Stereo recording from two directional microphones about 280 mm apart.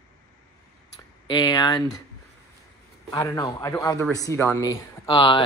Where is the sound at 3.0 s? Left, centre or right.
Centre.